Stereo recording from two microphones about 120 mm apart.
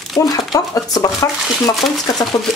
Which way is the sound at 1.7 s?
Centre (ahead or behind).